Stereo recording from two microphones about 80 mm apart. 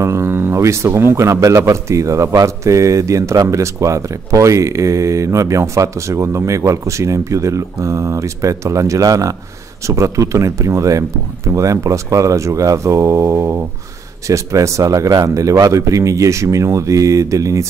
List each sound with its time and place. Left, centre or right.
0.0 s a man's voice: right